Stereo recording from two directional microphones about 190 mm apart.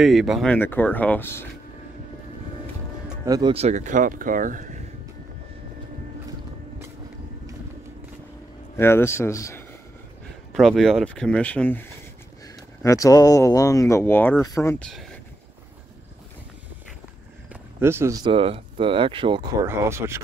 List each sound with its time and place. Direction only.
0.0 s speech: centre (ahead or behind)
3.3 s speech: 20° right (ahead or behind)
3.5 s speech: 35° right (ahead or behind)
8.7 s speech: 15° left (ahead or behind)
10.5 s speech: centre (ahead or behind)
12.8 s speech: 15° left (ahead or behind)
14.9 s a sound: centre (ahead or behind)
17.5 s a sound: 10° right (ahead or behind)
18.2 s speech: 30° right (ahead or behind); by 20.2 s 15° right (ahead or behind)